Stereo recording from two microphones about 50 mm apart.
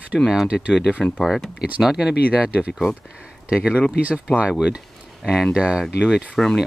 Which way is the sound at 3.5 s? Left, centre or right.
Centre.